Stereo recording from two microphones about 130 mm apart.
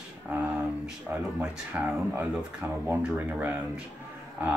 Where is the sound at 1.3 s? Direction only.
10° right (ahead or behind).